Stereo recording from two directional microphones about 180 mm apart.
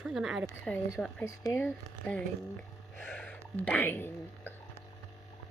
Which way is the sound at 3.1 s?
10° left (ahead or behind).